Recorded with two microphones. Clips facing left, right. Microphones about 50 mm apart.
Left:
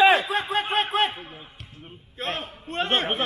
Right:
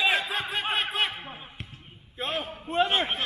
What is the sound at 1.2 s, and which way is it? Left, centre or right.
Basketball bounce, right.